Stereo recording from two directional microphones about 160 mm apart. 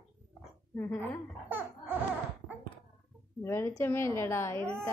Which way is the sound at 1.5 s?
10° right (ahead or behind).